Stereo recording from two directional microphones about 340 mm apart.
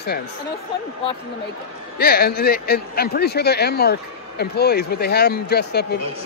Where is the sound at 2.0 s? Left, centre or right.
Left.